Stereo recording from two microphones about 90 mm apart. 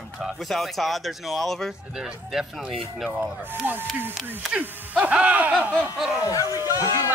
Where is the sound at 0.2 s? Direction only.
Centre (ahead or behind).